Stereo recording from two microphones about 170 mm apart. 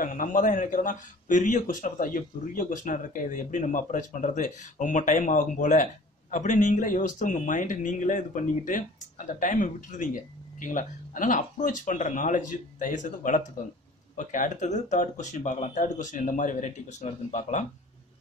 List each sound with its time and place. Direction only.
0.0 s a man's voice: 50° left (ahead or behind)